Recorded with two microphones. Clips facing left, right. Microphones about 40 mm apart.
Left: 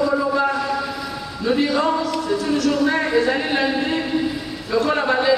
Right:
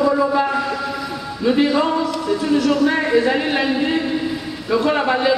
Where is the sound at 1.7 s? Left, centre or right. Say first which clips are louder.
Right 1 dB; centre.